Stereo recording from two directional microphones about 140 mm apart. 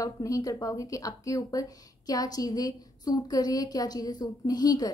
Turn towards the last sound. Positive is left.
turn(degrees=30)  # may be behind; listen again after turning